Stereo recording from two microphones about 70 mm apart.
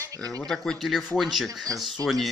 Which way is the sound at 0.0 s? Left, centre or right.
Right.